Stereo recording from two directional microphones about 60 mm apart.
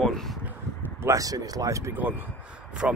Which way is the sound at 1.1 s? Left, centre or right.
Right.